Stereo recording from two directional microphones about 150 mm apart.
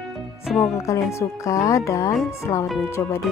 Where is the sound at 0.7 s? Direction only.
20° left (ahead or behind).